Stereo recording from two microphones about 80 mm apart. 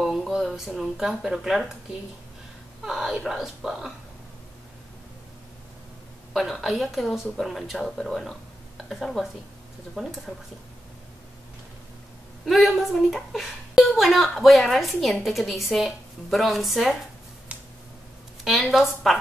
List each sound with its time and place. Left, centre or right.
0.0 s a sound: centre
0.4 s a woman's voice: centre
2.8 s a woman's voice: centre
6.3 s a woman's voice: centre
12.4 s a woman's voice: centre
18.7 s a woman's voice: centre